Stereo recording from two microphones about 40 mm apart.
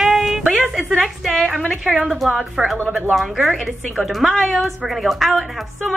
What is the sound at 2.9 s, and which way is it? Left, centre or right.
Speech, right.